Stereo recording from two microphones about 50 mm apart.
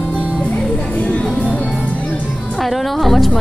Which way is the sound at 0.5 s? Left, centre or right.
Left.